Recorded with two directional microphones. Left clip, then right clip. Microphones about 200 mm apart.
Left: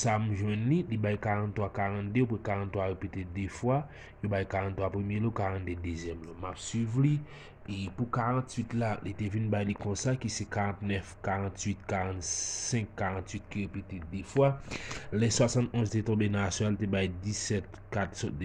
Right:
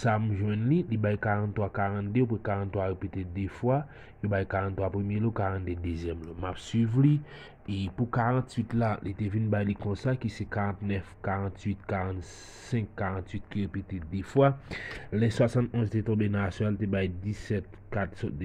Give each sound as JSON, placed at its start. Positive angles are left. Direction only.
{"t": 0.0, "sound": "speech", "side_deg": -15}
{"t": 5.9, "sound": "speech", "side_deg": -30}
{"t": 8.7, "sound": "speech", "side_deg": -20}
{"t": 13.5, "sound": "speech", "side_deg": -30}
{"t": 14.8, "sound": "speech", "side_deg": -10}